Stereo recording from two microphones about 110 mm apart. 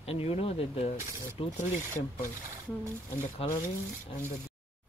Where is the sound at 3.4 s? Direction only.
55° left (ahead or behind).